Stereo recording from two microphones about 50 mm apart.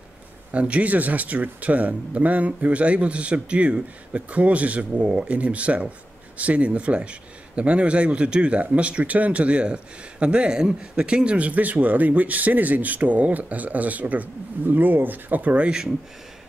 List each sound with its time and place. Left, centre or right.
0.5 s speech: right